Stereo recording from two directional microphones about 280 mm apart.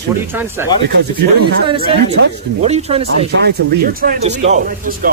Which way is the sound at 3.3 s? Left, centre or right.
Right.